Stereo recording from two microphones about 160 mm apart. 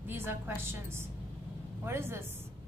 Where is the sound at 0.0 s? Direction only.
15° right (ahead or behind).